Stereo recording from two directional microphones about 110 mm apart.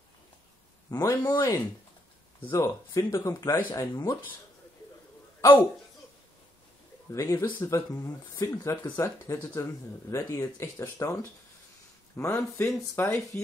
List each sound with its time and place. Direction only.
0.8 s a man's voice: 30° left (ahead or behind)
7.1 s a man's voice: 25° left (ahead or behind)
12.2 s speech: 10° left (ahead or behind)